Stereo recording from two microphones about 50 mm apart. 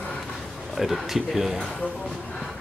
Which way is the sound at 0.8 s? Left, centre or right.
Centre.